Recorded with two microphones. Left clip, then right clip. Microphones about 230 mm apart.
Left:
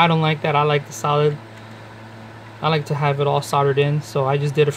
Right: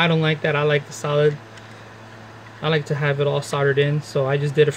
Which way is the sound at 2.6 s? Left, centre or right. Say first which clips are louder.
Left 2 dB; centre.